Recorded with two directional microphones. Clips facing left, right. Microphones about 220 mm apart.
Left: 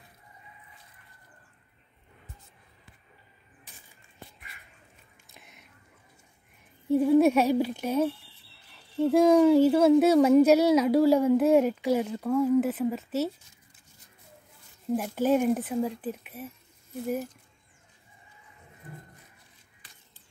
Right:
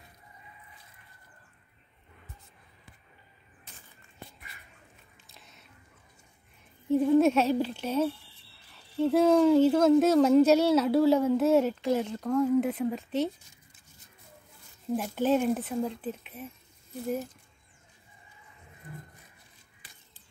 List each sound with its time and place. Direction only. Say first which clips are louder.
5.4 s whispering: left 1 dB; 15° left (ahead or behind)
6.9 s speech: left 2 dB; 10° left (ahead or behind)
15.0 s speech: left 1 dB; 10° left (ahead or behind)